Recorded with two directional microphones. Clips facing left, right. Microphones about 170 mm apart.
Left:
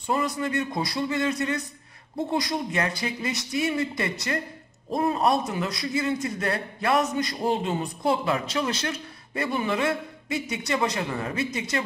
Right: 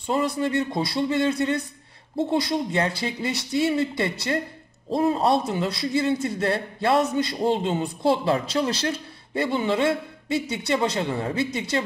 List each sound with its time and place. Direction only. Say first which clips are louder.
0.1 s a man's voice: right 3 dB; 30° right (ahead or behind)